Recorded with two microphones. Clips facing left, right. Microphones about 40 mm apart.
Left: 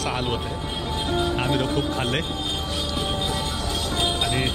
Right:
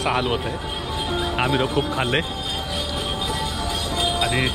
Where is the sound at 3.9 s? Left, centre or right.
Right.